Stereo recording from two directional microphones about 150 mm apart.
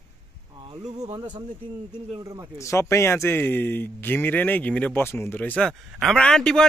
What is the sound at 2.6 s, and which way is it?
Speech, 20° left (ahead or behind).